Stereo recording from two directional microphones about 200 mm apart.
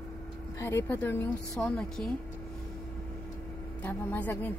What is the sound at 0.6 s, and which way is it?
A woman's voice, 15° left (ahead or behind).